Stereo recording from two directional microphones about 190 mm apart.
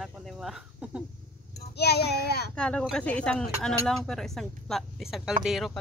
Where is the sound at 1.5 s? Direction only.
60° left (ahead or behind).